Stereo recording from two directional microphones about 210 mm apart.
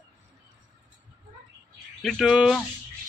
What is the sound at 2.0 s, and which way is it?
Speech, centre (ahead or behind).